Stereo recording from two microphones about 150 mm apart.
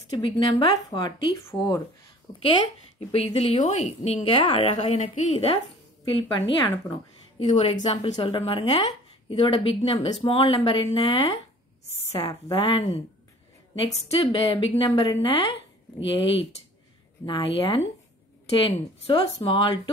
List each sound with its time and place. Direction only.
0.1 s a woman's voice: 35° left (ahead or behind)
3.1 s a woman's voice: 40° left (ahead or behind)
4.2 s a woman's voice: 40° left (ahead or behind)
6.0 s a woman's voice: 35° left (ahead or behind)
7.3 s a woman's voice: 45° left (ahead or behind)
11.8 s a sound: 45° left (ahead or behind)
12.5 s a woman's voice: 35° left (ahead or behind)